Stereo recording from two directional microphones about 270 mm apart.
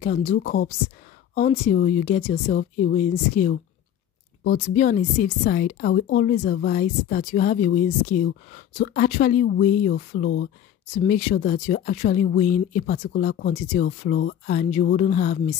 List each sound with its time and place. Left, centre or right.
0.0 s speech: left
0.4 s a woman's voice: left
1.3 s speech: left
4.6 s a woman's voice: left